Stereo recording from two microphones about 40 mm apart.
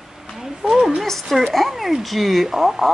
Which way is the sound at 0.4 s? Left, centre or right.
Centre.